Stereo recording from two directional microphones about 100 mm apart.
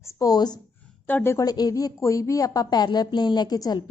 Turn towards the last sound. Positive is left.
turn(degrees=40)  # may be behind; listen again after turning